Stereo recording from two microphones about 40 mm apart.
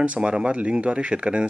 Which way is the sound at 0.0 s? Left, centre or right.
Right.